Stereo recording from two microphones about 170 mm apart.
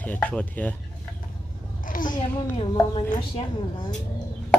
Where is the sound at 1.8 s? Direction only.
50° left (ahead or behind).